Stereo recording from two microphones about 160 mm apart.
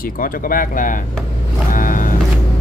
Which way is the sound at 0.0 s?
60° left (ahead or behind).